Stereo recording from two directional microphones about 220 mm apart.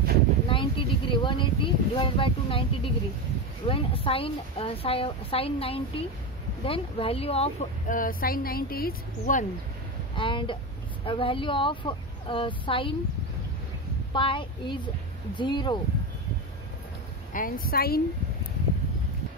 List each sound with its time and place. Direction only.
0.5 s a sound: 25° left (ahead or behind)
3.6 s a woman's voice: 25° left (ahead or behind)
10.1 s a woman's voice: 20° left (ahead or behind)
14.1 s a woman's voice: 25° left (ahead or behind)
17.3 s speech: 40° left (ahead or behind)